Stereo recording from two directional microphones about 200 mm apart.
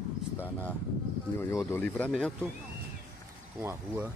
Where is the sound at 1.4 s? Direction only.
10° left (ahead or behind).